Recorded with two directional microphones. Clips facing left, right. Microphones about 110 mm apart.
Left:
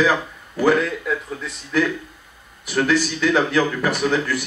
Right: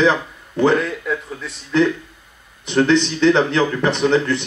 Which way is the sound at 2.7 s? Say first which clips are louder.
Right 4 dB; 25° right (ahead or behind).